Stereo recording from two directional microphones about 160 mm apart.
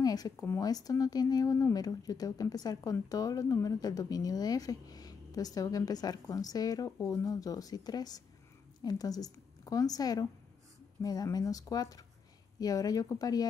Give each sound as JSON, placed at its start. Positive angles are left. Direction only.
{"t": 0.0, "sound": "a woman's voice", "side_deg": 25}